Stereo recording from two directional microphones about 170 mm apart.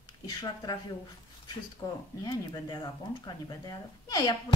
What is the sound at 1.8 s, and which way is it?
A woman's voice, 20° left (ahead or behind).